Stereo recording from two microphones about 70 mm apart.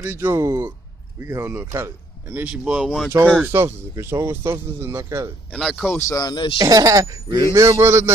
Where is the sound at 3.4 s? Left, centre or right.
Right.